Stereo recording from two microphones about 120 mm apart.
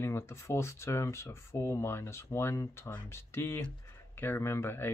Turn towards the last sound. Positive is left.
turn(degrees=20)  # may be behind; listen again after turning